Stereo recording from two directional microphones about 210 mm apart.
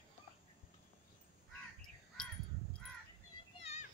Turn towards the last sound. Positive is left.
turn(degrees=30)  # may be behind; listen again after turning